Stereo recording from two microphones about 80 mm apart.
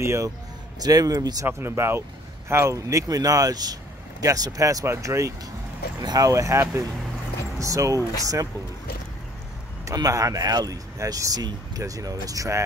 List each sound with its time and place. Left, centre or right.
0.0 s speech: right
0.8 s speech: right
1.6 s speech: right
5.9 s speech: right
9.9 s speech: right